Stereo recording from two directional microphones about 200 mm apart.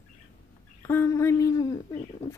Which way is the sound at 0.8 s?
10° left (ahead or behind).